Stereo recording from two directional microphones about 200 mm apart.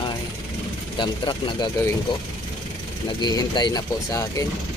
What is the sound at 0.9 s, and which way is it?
Speech, 20° left (ahead or behind).